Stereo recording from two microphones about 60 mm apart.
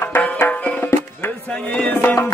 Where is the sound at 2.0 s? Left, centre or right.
Left.